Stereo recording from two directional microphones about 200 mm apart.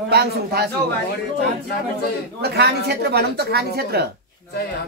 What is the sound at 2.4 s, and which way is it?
Speech, 55° right (ahead or behind).